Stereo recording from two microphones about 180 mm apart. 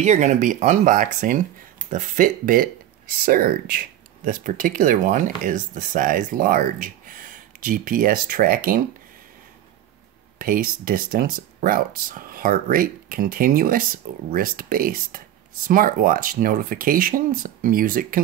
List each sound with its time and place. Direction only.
0.0 s speech: 40° right (ahead or behind)
10.4 s speech: 55° right (ahead or behind)